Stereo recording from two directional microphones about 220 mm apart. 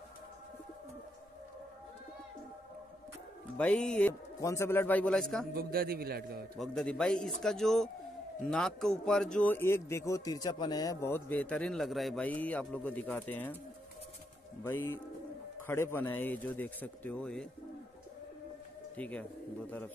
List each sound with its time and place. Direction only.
3.5 s a man's voice: 5° left (ahead or behind)
5.5 s a man's voice: 40° right (ahead or behind)
6.5 s a man's voice: 5° left (ahead or behind)
14.6 s a man's voice: 10° left (ahead or behind)
18.9 s a man's voice: 5° left (ahead or behind)